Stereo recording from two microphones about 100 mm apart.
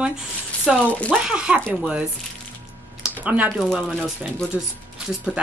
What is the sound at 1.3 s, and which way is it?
A woman's voice, 10° right (ahead or behind).